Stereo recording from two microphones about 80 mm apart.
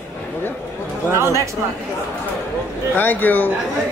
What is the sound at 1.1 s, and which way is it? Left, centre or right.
Speech, right.